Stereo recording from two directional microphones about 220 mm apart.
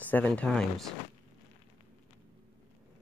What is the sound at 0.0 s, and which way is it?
Speech, 5° left (ahead or behind).